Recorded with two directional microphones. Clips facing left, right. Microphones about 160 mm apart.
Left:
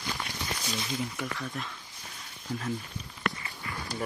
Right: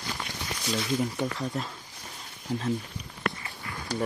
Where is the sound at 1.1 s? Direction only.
30° right (ahead or behind).